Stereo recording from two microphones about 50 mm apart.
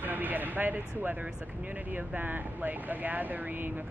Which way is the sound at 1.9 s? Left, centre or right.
Right.